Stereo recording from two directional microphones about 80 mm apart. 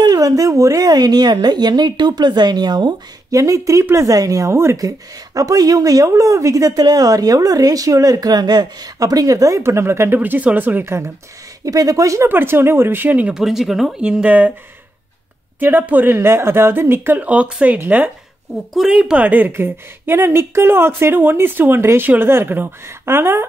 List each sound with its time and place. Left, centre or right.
0.0 s a woman's voice: right
3.3 s speech: right
4.7 s speech: right
9.6 s a woman's voice: right
11.6 s speech: right
12.3 s a woman's voice: right
13.4 s speech: centre
15.6 s a woman's voice: right